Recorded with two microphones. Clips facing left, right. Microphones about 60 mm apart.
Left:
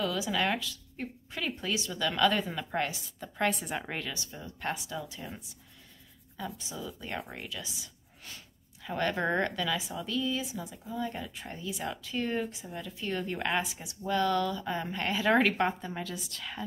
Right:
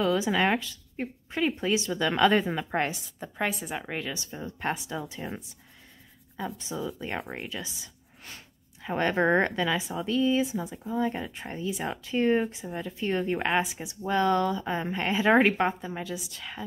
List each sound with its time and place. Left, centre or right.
0.0 s speech: right
3.3 s a woman's voice: centre
4.1 s speech: right
8.8 s speech: right
15.8 s speech: centre